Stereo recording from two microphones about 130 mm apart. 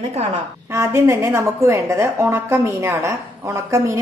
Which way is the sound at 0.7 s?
20° right (ahead or behind).